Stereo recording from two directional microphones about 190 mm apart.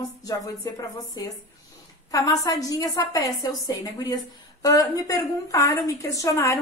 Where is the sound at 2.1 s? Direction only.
20° left (ahead or behind).